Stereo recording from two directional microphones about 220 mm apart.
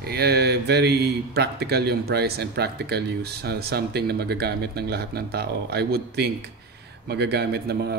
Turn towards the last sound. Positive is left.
turn(degrees=-50)  # may be behind; listen again after turning